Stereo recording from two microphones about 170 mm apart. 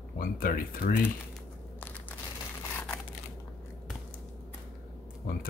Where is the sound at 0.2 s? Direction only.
55° left (ahead or behind).